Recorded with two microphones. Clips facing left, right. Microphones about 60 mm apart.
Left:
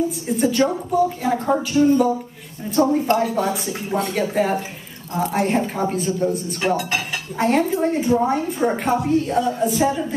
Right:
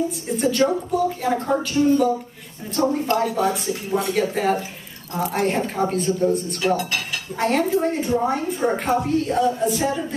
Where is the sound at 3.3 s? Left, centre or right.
Centre.